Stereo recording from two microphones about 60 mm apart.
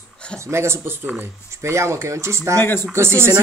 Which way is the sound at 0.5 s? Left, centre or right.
Right.